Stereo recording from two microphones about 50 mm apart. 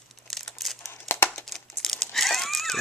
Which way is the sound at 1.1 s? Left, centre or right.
Left.